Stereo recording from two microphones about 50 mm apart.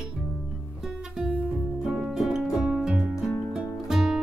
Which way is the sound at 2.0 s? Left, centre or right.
Centre.